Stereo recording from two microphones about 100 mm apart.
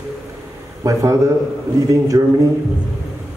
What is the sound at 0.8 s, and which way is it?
A man's voice, 35° right (ahead or behind).